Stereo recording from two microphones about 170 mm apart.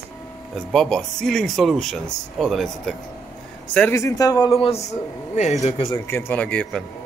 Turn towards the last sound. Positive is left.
turn(degrees=5)  # may be behind; listen again after turning